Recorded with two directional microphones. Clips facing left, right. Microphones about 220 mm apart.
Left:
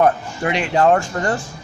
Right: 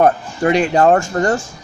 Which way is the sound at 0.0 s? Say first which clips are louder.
Right 3 dB; 40° right (ahead or behind).